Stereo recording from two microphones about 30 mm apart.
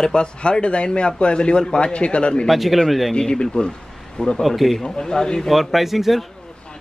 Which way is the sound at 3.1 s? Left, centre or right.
Left.